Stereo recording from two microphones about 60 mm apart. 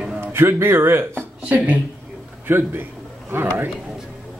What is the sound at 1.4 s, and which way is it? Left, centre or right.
Speech, right.